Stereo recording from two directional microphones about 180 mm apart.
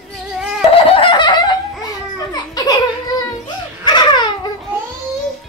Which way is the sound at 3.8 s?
25° left (ahead or behind).